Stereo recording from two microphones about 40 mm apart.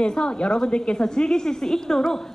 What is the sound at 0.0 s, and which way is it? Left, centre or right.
A woman's voice, left.